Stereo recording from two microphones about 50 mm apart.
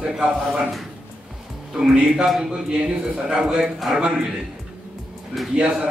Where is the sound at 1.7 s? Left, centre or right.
Centre.